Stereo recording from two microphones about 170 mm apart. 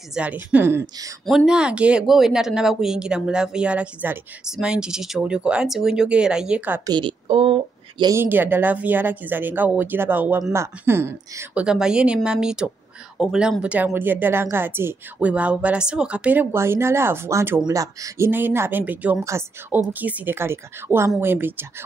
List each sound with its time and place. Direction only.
0.1 s speech: 10° right (ahead or behind)
1.2 s speech: centre (ahead or behind)
6.9 s a woman's voice: 30° right (ahead or behind)
8.0 s speech: 15° right (ahead or behind)